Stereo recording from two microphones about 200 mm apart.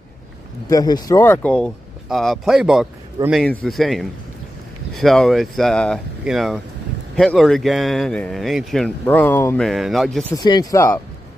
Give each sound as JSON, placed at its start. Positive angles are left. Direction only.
{"t": 0.7, "sound": "speech", "side_deg": 20}
{"t": 9.7, "sound": "speech", "side_deg": 0}
{"t": 10.3, "sound": "speech", "side_deg": 20}